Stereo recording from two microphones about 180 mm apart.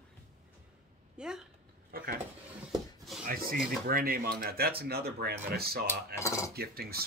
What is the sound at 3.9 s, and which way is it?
Speech, 55° right (ahead or behind).